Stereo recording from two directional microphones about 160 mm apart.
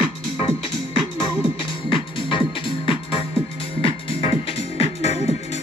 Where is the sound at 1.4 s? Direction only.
30° left (ahead or behind).